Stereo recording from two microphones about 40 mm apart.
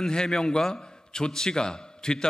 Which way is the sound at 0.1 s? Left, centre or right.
Centre.